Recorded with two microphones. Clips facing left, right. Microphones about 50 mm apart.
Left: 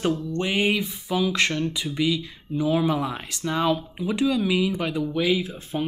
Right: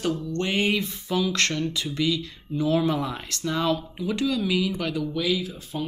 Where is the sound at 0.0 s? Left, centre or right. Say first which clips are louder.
Left 2 dB; centre.